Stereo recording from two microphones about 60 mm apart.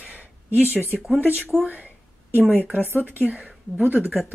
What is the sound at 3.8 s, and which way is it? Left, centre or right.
Speech, right.